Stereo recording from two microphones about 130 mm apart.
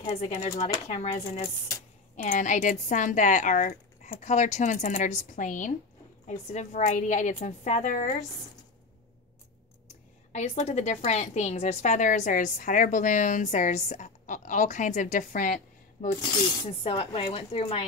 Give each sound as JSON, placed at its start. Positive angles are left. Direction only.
{"t": 0.0, "sound": "speech", "side_deg": 50}
{"t": 2.2, "sound": "a woman's voice", "side_deg": 70}
{"t": 4.2, "sound": "a woman's voice", "side_deg": 65}
{"t": 6.2, "sound": "a woman's voice", "side_deg": 65}
{"t": 10.3, "sound": "a woman's voice", "side_deg": 55}
{"t": 16.2, "sound": "speech", "side_deg": 45}